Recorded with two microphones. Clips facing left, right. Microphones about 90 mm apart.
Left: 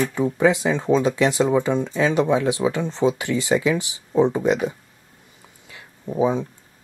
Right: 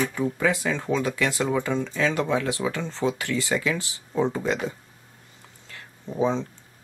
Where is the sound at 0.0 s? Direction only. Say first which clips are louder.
Left 5 dB; 25° left (ahead or behind).